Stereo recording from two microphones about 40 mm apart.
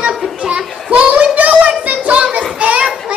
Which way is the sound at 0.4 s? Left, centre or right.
Right.